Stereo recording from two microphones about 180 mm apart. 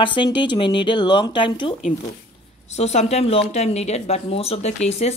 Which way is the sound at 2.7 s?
35° left (ahead or behind).